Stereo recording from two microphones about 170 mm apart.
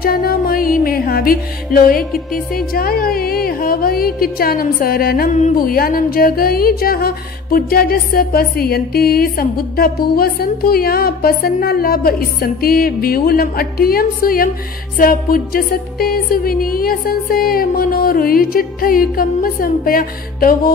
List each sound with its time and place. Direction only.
0.0 s music: 60° left (ahead or behind)
2.3 s a woman's voice: 60° left (ahead or behind)